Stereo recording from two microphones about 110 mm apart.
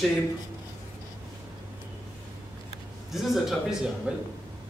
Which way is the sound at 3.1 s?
Centre (ahead or behind).